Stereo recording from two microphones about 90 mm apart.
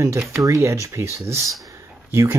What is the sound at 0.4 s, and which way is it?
Speech, 35° right (ahead or behind).